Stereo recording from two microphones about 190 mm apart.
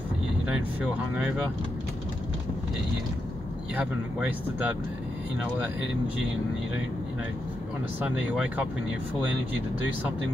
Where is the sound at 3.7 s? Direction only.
10° right (ahead or behind).